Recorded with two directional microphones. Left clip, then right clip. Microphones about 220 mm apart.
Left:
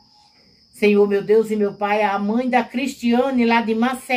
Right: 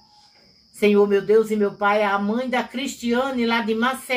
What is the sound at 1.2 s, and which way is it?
Speech, centre (ahead or behind).